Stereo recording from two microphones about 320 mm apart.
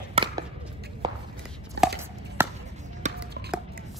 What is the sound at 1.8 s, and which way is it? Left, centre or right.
Chopping, right.